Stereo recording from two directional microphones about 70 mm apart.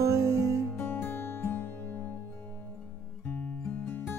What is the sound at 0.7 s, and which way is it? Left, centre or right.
Music, left.